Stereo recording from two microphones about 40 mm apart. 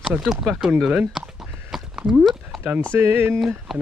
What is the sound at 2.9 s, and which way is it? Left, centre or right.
Speech, right.